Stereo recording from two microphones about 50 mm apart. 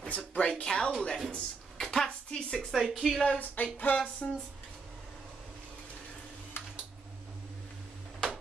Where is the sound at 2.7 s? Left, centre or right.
Centre.